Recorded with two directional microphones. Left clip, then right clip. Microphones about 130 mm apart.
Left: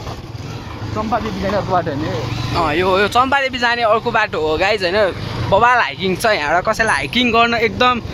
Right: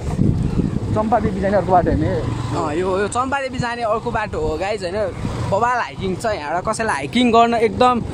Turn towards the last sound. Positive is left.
turn(degrees=-30)  # may be behind; listen again after turning